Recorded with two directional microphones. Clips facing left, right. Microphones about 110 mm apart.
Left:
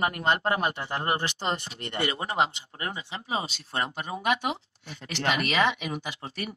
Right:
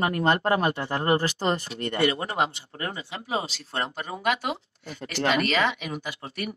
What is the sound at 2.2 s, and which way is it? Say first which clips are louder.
Speech: even; 20° left (ahead or behind).